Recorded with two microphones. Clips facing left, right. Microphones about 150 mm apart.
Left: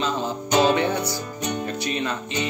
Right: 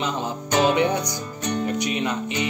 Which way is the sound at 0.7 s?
15° right (ahead or behind).